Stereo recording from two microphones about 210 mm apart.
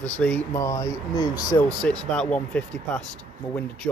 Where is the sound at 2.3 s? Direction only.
5° left (ahead or behind).